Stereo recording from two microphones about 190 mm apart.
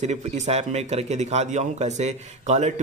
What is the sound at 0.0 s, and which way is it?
Speech, 35° right (ahead or behind).